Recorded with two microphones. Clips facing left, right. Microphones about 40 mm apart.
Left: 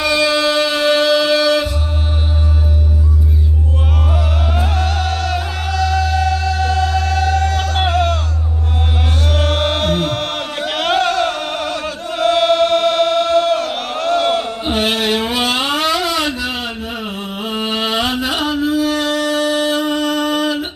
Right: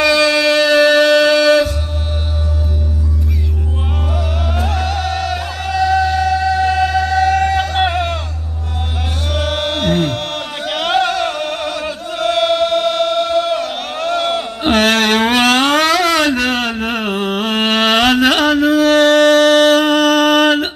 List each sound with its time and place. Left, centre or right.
0.4 s music: centre
1.0 s a sound: right
4.1 s music: centre
5.7 s music: right
7.2 s music: right
9.3 s chant: centre
11.1 s music: centre
12.1 s choir: centre
14.7 s a sound: right